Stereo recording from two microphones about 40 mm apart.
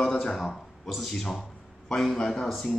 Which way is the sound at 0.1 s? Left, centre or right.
Centre.